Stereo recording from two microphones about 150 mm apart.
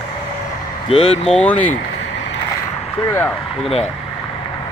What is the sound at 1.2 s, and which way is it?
Speech, 5° left (ahead or behind).